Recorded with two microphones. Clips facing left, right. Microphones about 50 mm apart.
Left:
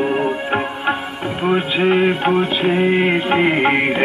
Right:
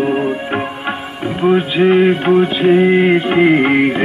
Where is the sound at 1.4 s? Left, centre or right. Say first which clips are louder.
Right 5 dB; centre.